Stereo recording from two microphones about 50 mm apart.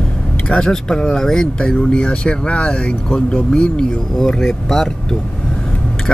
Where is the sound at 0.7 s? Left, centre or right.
Centre.